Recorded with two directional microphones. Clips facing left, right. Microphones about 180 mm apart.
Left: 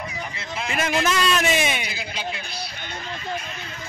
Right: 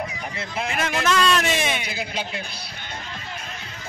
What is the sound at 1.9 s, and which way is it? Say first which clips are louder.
Speech: right 2 dB; 55° right (ahead or behind).